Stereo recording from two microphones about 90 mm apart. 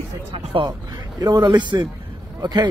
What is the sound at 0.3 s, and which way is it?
Speech, 80° right.